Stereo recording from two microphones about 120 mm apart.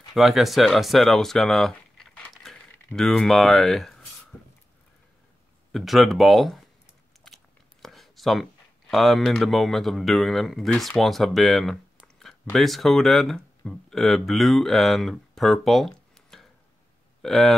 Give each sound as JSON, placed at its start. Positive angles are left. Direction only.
{"t": 0.1, "sound": "speech", "side_deg": 0}
{"t": 5.7, "sound": "speech", "side_deg": 0}
{"t": 7.8, "sound": "speech", "side_deg": 0}